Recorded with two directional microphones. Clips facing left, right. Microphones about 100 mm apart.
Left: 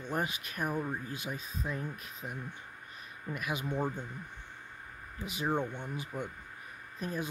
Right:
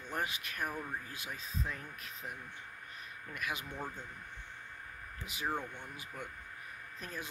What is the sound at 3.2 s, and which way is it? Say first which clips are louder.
Speech: left 5 dB; 20° left (ahead or behind).